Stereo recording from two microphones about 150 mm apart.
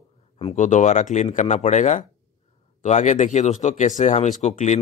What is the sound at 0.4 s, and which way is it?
Speech, 40° left (ahead or behind).